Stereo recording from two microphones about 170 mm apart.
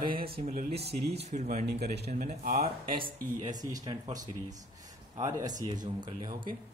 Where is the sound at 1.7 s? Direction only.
70° right (ahead or behind).